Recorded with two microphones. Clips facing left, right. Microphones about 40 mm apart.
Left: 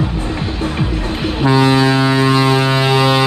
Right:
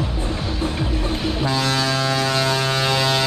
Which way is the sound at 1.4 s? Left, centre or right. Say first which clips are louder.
Left 11 dB; left.